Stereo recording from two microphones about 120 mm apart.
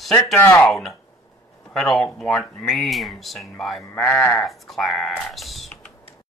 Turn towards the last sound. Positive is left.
turn(degrees=0)  # may be behind; listen again after turning